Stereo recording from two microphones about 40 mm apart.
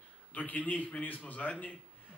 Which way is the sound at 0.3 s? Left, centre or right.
Left.